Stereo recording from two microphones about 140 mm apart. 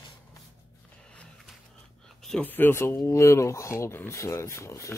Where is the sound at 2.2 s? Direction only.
10° left (ahead or behind).